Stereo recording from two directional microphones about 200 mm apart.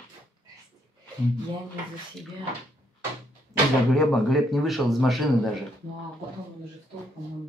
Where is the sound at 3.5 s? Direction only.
15° right (ahead or behind).